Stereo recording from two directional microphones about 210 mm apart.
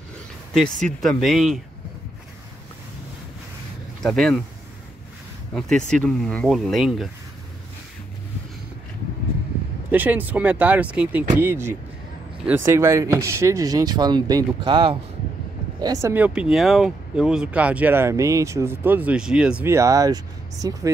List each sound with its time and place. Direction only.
1.0 s speech: centre (ahead or behind)
4.0 s speech: 5° left (ahead or behind)
5.5 s speech: 5° left (ahead or behind)
9.8 s speech: 10° right (ahead or behind)